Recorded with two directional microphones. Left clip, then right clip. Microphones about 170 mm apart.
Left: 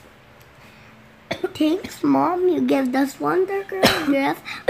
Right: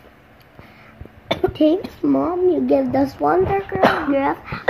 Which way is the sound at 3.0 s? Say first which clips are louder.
Right 4 dB; 30° left (ahead or behind).